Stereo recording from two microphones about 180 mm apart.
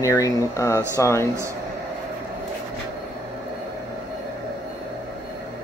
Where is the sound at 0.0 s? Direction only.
20° left (ahead or behind).